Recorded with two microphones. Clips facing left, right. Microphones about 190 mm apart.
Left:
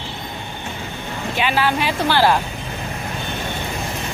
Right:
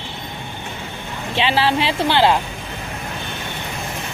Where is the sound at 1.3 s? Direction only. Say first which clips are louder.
Right 2 dB; 30° right (ahead or behind).